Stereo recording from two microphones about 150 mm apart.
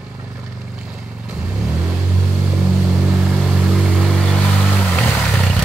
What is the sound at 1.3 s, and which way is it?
Vehicle, 5° right (ahead or behind).